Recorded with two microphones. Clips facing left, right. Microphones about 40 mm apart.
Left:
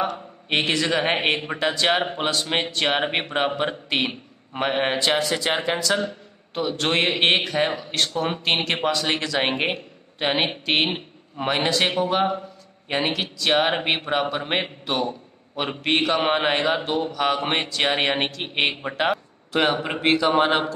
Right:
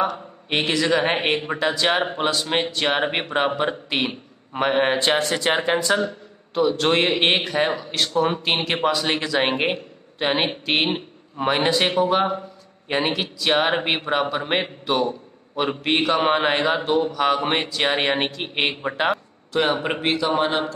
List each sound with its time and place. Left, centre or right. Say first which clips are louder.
0.5 s a man's voice: right 1 dB; centre
5.7 s speech: right 3 dB; right
5.9 s a man's voice: right 2 dB; centre
19.9 s speech: right 3 dB; right
20.3 s speech: left 2 dB; left